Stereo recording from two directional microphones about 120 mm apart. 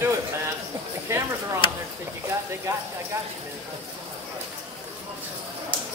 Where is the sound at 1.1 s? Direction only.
25° right (ahead or behind).